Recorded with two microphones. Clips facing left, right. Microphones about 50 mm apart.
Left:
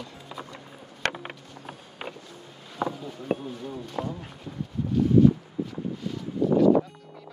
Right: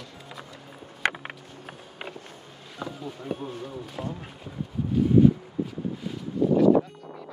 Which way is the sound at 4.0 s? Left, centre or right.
Left.